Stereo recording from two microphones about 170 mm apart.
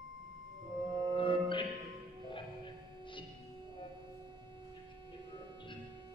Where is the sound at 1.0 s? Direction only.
30° left (ahead or behind).